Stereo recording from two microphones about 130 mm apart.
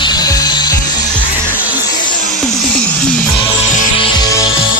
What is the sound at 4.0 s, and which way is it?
Music, 30° left (ahead or behind).